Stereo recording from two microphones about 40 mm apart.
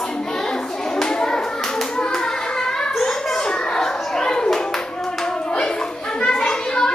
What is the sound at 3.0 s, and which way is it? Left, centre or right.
Children playing, centre.